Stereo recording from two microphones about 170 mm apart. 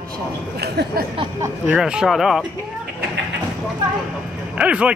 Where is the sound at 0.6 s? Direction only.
75° right (ahead or behind).